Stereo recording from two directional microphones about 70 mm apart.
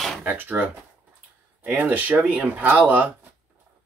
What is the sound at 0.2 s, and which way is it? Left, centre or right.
Speech, right.